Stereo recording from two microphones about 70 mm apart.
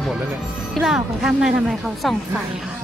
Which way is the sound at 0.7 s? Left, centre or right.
Centre.